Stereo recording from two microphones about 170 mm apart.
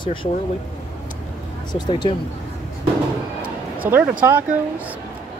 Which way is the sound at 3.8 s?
10° right (ahead or behind).